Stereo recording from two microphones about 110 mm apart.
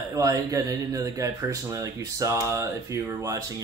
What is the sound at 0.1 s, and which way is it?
Speech, 30° right (ahead or behind).